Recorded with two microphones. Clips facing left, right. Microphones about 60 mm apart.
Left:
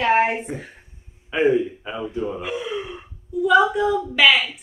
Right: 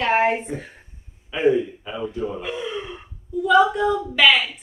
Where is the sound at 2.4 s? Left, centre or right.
Centre.